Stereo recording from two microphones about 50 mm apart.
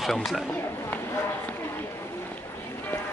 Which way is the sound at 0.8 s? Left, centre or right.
Left.